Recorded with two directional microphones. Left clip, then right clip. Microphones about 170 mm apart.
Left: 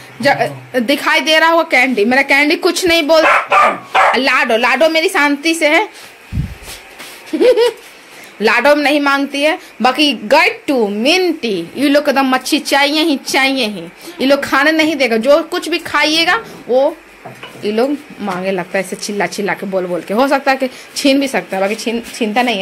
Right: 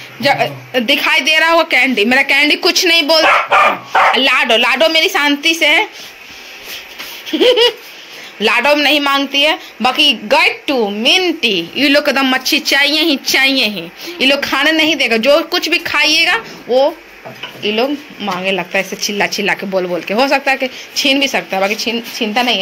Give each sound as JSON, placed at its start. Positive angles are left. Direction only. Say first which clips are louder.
{"t": 0.2, "sound": "speech", "louder": "even", "side_deg": 30}
{"t": 7.3, "sound": "speech", "louder": "even", "side_deg": 20}
{"t": 14.1, "sound": "speech", "louder": "left 1 dB", "side_deg": 30}
{"t": 18.9, "sound": "a woman's voice", "louder": "right 2 dB", "side_deg": 30}
{"t": 19.4, "sound": "speech", "louder": "right 2 dB", "side_deg": 15}
{"t": 20.2, "sound": "a woman's voice", "louder": "even", "side_deg": 30}
{"t": 21.3, "sound": "speech", "louder": "right 1 dB", "side_deg": 20}
{"t": 21.7, "sound": "a woman's voice", "louder": "right 1 dB", "side_deg": 30}